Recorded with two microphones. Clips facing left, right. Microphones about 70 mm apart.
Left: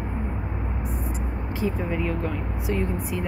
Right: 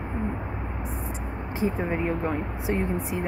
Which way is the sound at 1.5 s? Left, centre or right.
Right.